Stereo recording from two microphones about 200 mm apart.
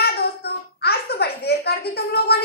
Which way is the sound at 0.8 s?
55° left (ahead or behind).